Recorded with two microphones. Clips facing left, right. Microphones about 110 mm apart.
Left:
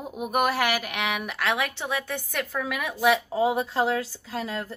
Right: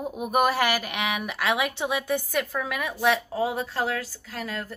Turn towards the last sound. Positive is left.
turn(degrees=20)  # may be behind; listen again after turning